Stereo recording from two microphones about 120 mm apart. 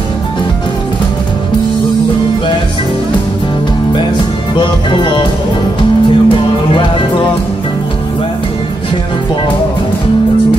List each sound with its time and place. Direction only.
4.6 s music: 45° left (ahead or behind)